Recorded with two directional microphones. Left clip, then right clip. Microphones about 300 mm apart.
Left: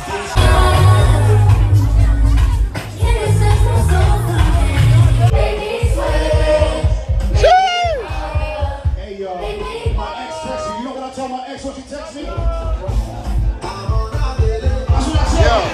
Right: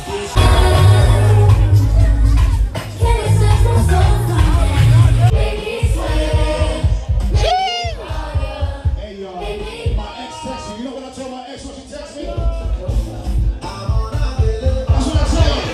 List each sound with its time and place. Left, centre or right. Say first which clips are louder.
0.5 s music: left 2 dB; centre
3.1 s music: even; centre
6.0 s music: left 5 dB; centre
15.0 s music: left 5 dB; centre